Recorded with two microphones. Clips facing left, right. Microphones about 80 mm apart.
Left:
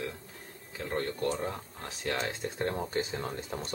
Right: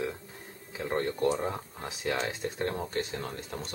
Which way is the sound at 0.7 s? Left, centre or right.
Centre.